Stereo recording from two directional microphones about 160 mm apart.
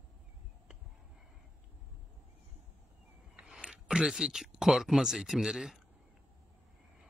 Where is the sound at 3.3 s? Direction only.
5° right (ahead or behind).